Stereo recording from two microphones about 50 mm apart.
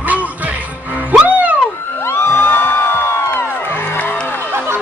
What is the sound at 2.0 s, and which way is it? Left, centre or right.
Music, left.